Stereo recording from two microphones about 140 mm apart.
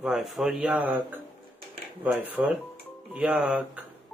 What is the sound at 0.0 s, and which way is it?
Speech, centre (ahead or behind).